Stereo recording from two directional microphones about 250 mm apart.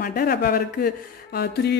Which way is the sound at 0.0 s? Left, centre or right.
Left.